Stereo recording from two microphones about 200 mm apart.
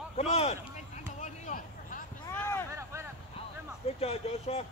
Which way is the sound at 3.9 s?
30° left (ahead or behind).